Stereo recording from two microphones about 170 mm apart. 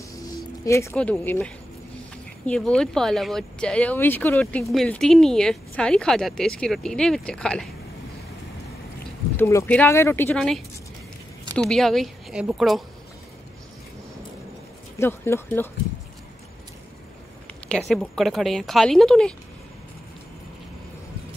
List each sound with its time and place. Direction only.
0.7 s speech: 15° left (ahead or behind)
9.4 s speech: 15° left (ahead or behind); by 12.8 s centre (ahead or behind)
15.0 s speech: 15° left (ahead or behind)
17.6 s speech: 5° left (ahead or behind)